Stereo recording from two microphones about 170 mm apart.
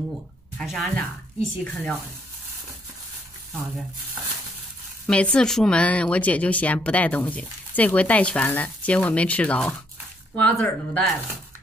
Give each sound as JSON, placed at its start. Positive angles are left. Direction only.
{"t": 0.6, "sound": "speech", "side_deg": 0}
{"t": 5.0, "sound": "speech", "side_deg": 5}